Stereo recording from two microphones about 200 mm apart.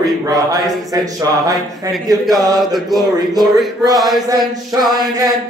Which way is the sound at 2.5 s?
Centre (ahead or behind).